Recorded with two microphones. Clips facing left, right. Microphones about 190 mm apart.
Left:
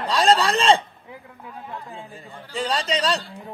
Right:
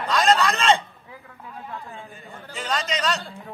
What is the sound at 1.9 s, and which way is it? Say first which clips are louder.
Speech: left 2 dB; 30° left (ahead or behind).